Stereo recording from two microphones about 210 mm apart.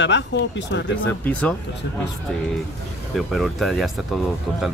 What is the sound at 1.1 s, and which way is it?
Speech, 5° left (ahead or behind).